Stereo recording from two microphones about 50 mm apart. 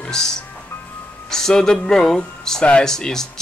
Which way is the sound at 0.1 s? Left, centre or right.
Centre.